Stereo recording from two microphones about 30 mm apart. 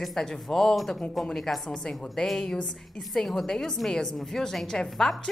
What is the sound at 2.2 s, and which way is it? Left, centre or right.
A woman's voice, centre.